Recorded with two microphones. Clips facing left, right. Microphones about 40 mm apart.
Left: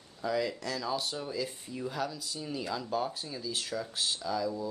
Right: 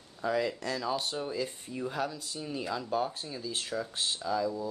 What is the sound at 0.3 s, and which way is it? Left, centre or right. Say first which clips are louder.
Speech: right 1 dB; right.